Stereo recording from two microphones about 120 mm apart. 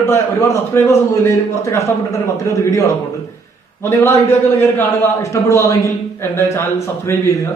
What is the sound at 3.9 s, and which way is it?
A man's voice, 20° left (ahead or behind).